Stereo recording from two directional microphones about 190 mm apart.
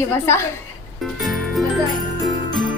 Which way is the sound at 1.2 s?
Centre (ahead or behind).